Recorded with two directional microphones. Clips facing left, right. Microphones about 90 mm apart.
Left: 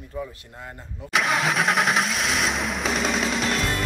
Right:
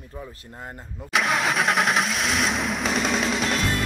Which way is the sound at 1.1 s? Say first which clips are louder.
Even; centre (ahead or behind).